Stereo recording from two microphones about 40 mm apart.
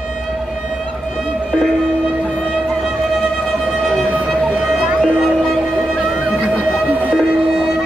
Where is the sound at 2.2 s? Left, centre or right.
Right.